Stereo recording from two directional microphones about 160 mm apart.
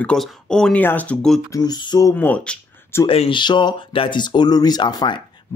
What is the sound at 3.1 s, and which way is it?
Speech, 35° left (ahead or behind).